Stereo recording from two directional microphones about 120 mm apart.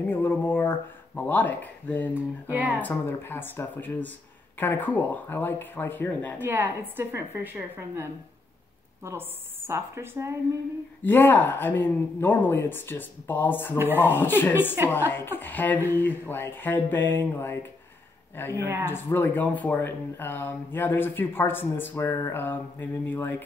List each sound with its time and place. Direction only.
0.0 s speech: 15° left (ahead or behind)
2.1 s a woman's voice: 15° right (ahead or behind)
2.8 s speech: 15° left (ahead or behind)
6.4 s a woman's voice: 15° right (ahead or behind)
11.0 s speech: 15° left (ahead or behind)
18.5 s a woman's voice: 20° right (ahead or behind)
18.9 s speech: 15° left (ahead or behind)